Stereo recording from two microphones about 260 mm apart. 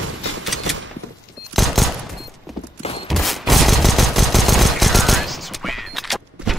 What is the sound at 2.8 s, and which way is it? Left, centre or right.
Fusillade, left.